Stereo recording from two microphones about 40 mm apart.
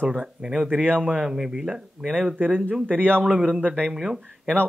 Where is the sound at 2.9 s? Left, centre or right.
Right.